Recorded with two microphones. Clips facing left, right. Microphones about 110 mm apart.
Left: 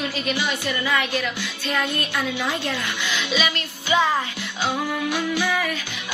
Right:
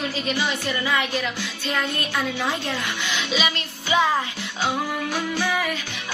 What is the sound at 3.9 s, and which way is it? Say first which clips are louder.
Music: even; 10° right (ahead or behind).